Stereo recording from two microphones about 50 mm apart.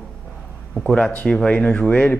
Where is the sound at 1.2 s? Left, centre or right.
Centre.